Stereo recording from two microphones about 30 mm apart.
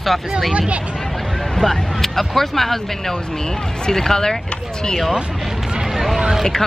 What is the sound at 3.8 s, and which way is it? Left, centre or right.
Speech, centre.